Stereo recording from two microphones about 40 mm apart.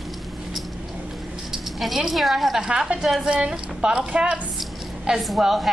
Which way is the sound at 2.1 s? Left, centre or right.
Centre.